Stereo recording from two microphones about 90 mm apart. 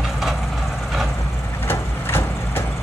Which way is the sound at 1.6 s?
25° left (ahead or behind).